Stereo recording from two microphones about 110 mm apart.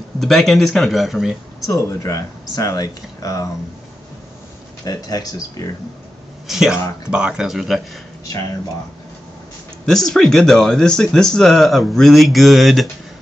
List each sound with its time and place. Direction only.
0.2 s speech: centre (ahead or behind)
1.7 s speech: 30° left (ahead or behind)
4.8 s speech: 35° left (ahead or behind)
6.4 s speech: 5° right (ahead or behind)
9.8 s speech: 5° left (ahead or behind)